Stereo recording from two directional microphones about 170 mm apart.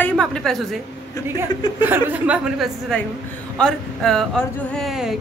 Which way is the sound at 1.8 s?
10° right (ahead or behind).